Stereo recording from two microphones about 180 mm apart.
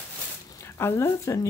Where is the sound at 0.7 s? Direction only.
15° left (ahead or behind).